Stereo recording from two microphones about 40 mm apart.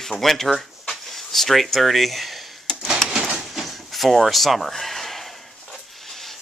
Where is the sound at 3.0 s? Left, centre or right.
Centre.